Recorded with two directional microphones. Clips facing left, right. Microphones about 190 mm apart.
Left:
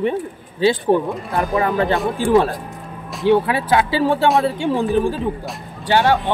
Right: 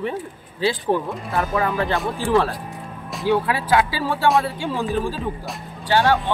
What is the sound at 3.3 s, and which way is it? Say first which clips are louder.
Speech: left 4 dB; 25° left (ahead or behind).